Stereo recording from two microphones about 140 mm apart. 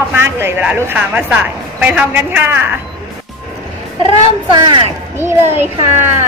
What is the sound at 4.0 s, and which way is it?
Speech, 35° right (ahead or behind).